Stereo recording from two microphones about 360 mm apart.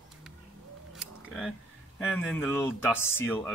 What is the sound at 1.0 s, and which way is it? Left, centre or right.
Camera, centre.